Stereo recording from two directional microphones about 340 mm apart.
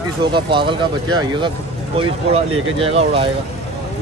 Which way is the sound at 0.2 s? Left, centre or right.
Centre.